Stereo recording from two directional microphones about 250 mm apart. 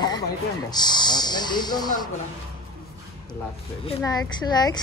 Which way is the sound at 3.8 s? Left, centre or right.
Centre.